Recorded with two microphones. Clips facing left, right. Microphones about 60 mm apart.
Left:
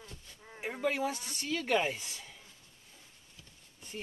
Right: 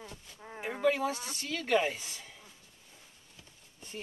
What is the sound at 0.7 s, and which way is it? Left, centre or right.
Speech, centre.